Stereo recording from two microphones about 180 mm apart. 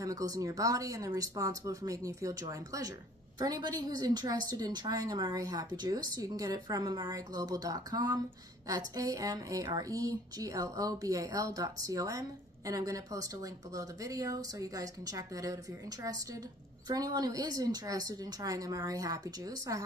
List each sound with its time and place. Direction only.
0.0 s speech: 20° right (ahead or behind)